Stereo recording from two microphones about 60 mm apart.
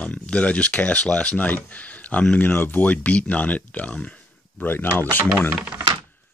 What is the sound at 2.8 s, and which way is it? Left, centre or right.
Speech, left.